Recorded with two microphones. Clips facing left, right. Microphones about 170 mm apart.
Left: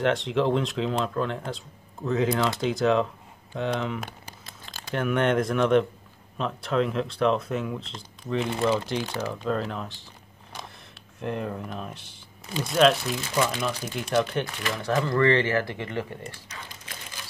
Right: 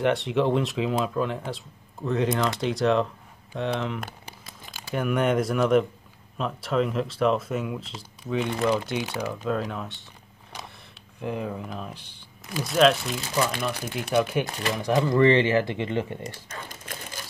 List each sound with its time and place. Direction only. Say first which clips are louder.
0.0 s speech: right 1 dB; centre (ahead or behind)
11.1 s speech: even; centre (ahead or behind); by 16.2 s 20° right (ahead or behind)
16.4 s typing: right 4 dB; 50° right (ahead or behind)